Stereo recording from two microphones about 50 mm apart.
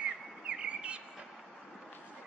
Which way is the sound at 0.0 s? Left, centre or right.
Right.